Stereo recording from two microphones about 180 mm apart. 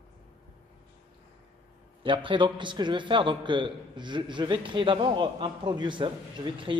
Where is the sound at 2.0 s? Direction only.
30° right (ahead or behind).